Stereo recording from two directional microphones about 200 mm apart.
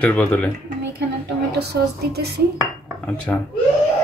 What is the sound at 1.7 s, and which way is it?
Speech, 55° right (ahead or behind).